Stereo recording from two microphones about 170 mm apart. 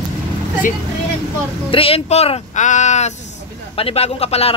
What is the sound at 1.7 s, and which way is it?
Speech, 35° left (ahead or behind).